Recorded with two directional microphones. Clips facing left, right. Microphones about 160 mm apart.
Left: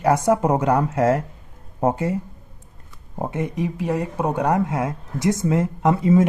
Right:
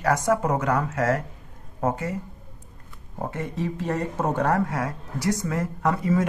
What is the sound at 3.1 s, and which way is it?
Speech, 20° left (ahead or behind).